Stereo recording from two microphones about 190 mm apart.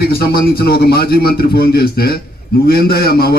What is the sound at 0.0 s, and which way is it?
A man's voice, 55° left (ahead or behind).